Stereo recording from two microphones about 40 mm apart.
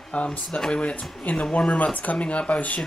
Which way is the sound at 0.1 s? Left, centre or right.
Left.